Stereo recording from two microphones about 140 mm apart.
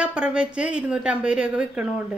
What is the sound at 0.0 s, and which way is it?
A woman's voice, 5° right (ahead or behind).